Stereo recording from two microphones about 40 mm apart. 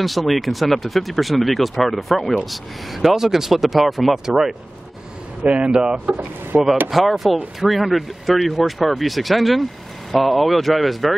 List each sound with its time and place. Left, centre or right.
0.0 s speech: centre
5.4 s speech: right
6.0 s speech: right
6.9 s speech: centre